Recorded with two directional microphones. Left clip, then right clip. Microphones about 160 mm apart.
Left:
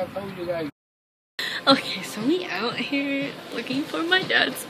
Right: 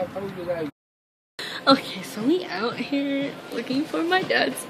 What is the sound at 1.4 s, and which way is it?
A woman's voice, 15° right (ahead or behind).